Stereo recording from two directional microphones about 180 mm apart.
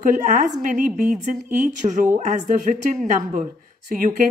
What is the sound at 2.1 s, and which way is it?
Speech, 40° right (ahead or behind).